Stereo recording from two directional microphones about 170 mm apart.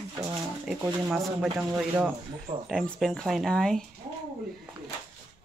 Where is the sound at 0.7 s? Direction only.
5° right (ahead or behind).